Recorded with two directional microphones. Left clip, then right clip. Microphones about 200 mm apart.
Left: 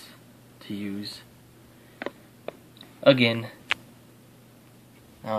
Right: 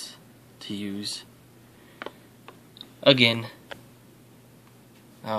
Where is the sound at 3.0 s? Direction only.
Centre (ahead or behind).